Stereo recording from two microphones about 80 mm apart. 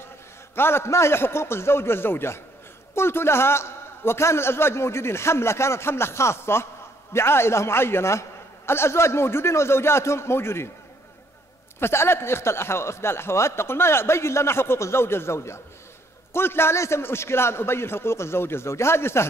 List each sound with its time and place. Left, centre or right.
0.6 s a man's voice: left
11.8 s a man's voice: left